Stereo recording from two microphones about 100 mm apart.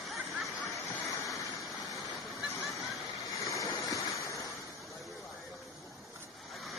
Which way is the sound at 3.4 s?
30° left (ahead or behind).